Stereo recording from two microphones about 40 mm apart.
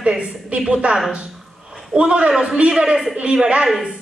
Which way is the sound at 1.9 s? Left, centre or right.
Right.